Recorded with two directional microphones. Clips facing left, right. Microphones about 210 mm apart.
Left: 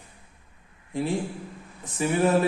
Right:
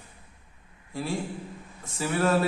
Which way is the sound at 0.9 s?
20° left (ahead or behind).